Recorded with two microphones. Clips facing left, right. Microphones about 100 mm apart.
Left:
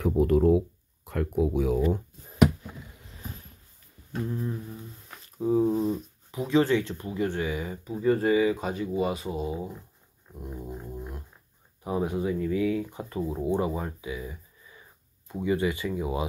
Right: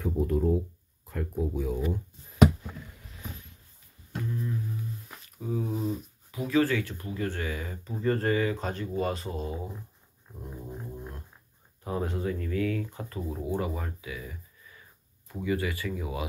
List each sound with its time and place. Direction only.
0.0 s speech: 75° left (ahead or behind)
4.3 s a sound: 35° left (ahead or behind)
5.4 s speech: 30° left (ahead or behind)
5.7 s speech: centre (ahead or behind)
6.3 s speech: 25° left (ahead or behind)
10.4 s dog: 5° left (ahead or behind)
11.8 s speech: 15° left (ahead or behind)